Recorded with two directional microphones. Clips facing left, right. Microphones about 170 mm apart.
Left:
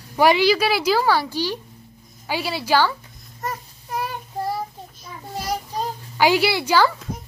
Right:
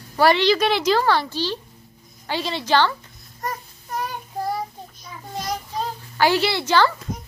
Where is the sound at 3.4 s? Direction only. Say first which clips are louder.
Even; 5° left (ahead or behind).